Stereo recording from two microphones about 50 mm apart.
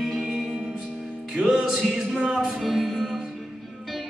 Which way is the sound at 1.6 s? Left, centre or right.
Centre.